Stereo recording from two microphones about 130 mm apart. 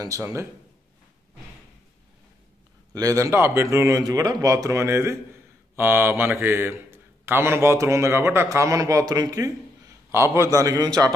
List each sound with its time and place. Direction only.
0.2 s a man's voice: 20° right (ahead or behind)
2.9 s a man's voice: 25° right (ahead or behind)